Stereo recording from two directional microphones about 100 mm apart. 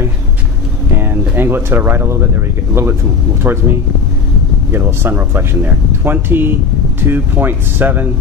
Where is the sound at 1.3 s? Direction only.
20° right (ahead or behind).